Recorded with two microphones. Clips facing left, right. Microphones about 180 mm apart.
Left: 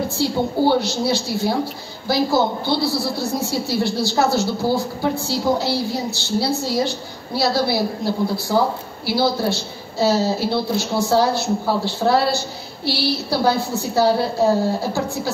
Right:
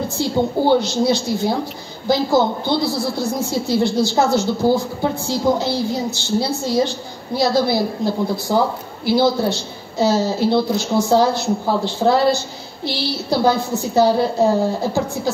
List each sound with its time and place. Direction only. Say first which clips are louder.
0.2 s a woman's voice: right 1 dB; 20° right (ahead or behind)